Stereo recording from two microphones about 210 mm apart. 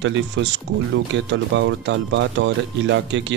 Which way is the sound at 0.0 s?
60° right (ahead or behind).